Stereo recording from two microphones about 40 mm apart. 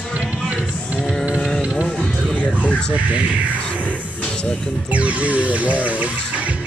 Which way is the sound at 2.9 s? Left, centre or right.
Right.